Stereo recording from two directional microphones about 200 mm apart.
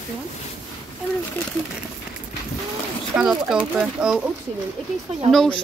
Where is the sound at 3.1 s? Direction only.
10° right (ahead or behind).